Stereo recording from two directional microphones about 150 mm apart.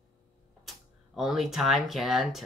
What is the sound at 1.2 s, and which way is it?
Speech, centre (ahead or behind).